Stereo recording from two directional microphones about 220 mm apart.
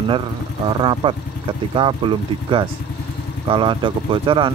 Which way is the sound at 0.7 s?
20° right (ahead or behind).